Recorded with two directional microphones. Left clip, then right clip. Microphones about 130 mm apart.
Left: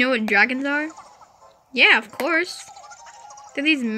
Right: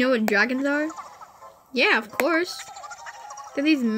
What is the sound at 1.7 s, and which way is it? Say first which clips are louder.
Speech: left 4 dB; 20° right (ahead or behind).